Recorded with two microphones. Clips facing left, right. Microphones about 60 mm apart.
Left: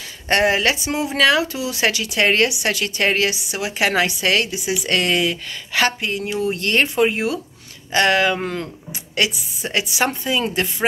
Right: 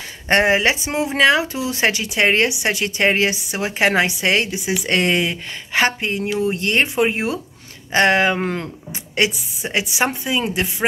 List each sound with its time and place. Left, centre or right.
0.3 s speech: right